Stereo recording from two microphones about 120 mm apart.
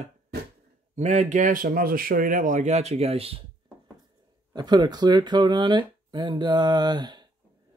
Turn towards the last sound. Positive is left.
turn(degrees=-35)  # may be behind; listen again after turning